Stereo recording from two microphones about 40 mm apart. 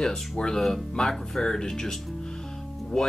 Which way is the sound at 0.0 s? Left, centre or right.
Centre.